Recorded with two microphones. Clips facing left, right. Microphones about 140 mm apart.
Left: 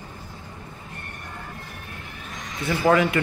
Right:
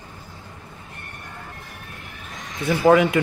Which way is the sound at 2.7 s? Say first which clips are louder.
Right 4 dB; 15° right (ahead or behind).